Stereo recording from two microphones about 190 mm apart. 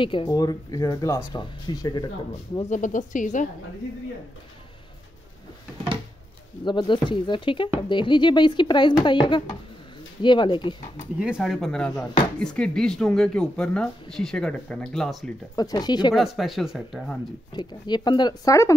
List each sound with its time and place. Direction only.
0.0 s speech: 25° left (ahead or behind)
2.6 s a woman's voice: 40° left (ahead or behind)
6.6 s speech: 25° left (ahead or behind)
11.1 s speech: 5° right (ahead or behind)
15.5 s speech: 20° left (ahead or behind)
16.2 s speech: centre (ahead or behind)
17.6 s speech: 20° left (ahead or behind)